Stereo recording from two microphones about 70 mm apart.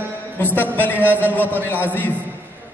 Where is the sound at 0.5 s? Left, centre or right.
Left.